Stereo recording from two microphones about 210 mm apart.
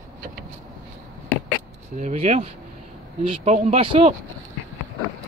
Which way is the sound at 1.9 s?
35° right (ahead or behind).